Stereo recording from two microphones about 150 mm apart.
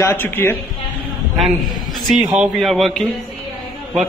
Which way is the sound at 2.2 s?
10° right (ahead or behind).